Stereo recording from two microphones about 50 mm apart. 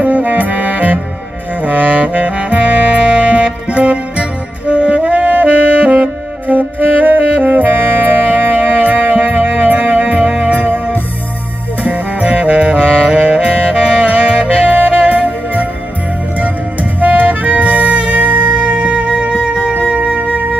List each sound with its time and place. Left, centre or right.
0.0 s music: right
1.6 s saxophone: right
17.0 s music: right